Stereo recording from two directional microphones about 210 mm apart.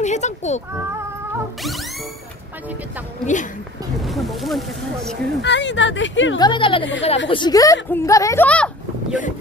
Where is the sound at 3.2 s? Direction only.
35° left (ahead or behind).